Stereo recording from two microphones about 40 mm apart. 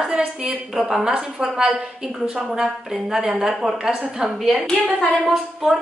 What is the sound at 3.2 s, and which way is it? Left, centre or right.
Speech, centre.